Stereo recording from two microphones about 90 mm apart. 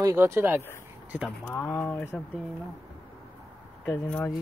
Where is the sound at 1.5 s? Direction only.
35° left (ahead or behind).